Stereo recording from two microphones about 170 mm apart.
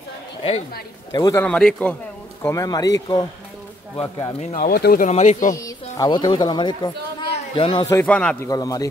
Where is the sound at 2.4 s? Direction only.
20° left (ahead or behind).